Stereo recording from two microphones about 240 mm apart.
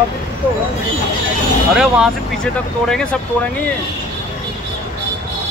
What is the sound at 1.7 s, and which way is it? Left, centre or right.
Speech, centre.